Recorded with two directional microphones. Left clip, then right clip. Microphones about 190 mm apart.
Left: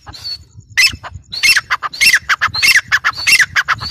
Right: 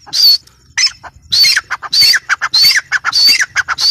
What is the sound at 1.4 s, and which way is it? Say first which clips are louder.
Squawk: left 1 dB; 15° left (ahead or behind).